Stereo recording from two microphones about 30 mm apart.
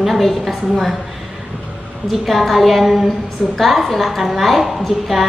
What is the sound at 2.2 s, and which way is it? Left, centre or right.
A woman's voice, centre.